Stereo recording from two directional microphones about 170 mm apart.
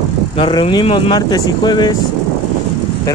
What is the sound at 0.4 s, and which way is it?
Speech, 30° left (ahead or behind).